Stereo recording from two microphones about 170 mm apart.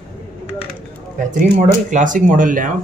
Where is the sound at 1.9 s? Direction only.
50° right (ahead or behind).